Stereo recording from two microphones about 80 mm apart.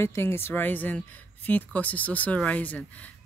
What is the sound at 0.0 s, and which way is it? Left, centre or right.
Speech, left.